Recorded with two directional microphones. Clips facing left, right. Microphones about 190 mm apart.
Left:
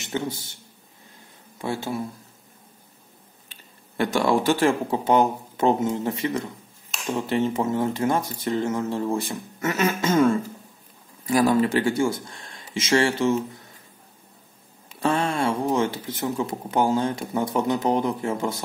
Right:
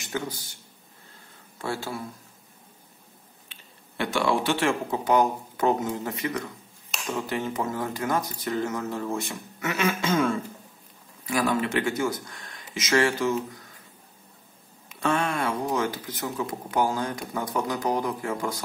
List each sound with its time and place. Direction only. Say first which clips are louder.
0.0 s a man's voice: left 4 dB; 25° left (ahead or behind)
1.6 s speech: left 4 dB; 20° left (ahead or behind)
3.4 s speech: left 1 dB; 45° left (ahead or behind); by 13.6 s 25° left (ahead or behind)
14.9 s speech: left 2 dB; 30° left (ahead or behind)